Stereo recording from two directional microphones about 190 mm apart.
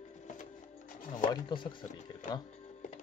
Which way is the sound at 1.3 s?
25° left (ahead or behind).